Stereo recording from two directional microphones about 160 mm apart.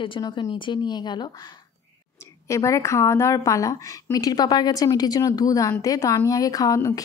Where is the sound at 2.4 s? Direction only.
20° left (ahead or behind).